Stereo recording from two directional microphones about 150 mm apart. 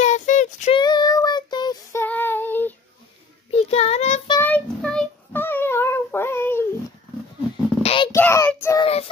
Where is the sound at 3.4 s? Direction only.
45° left (ahead or behind).